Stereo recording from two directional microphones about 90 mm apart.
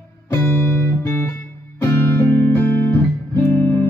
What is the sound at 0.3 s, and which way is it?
Music, 30° left (ahead or behind).